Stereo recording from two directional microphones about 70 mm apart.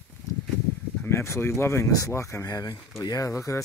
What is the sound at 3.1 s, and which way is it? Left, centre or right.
Speech, left.